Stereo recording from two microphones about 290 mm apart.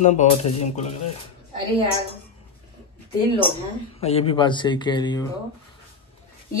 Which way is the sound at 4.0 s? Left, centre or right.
Left.